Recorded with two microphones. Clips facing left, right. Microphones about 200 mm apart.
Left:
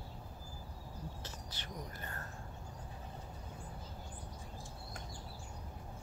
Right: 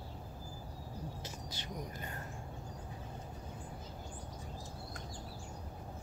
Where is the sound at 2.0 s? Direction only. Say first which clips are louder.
Right 2 dB; 15° right (ahead or behind).